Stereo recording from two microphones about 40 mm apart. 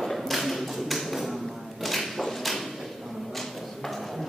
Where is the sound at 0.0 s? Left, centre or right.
Centre.